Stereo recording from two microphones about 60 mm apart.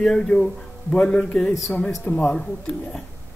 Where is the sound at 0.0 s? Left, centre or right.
Centre.